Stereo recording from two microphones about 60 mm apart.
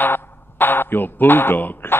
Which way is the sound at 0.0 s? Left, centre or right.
Left.